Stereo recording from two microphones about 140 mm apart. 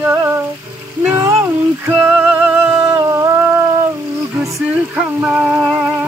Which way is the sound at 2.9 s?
25° right (ahead or behind).